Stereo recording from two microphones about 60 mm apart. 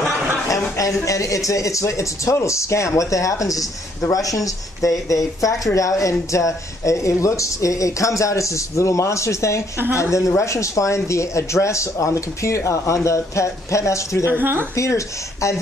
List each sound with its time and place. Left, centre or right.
0.5 s speech: left
14.3 s speech: right
14.8 s speech: left